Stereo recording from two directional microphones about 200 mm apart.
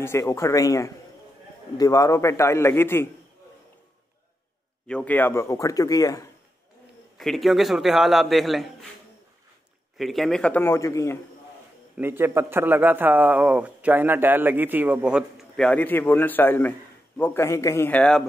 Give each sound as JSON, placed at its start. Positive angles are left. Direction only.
{"t": 0.0, "sound": "speech", "side_deg": 15}
{"t": 4.8, "sound": "speech", "side_deg": 5}
{"t": 7.2, "sound": "a man's voice", "side_deg": 0}
{"t": 9.9, "sound": "speech", "side_deg": 0}
{"t": 12.0, "sound": "a man's voice", "side_deg": -10}